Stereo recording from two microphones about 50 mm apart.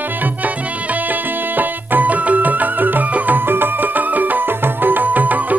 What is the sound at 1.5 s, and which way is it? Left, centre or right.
Music, right.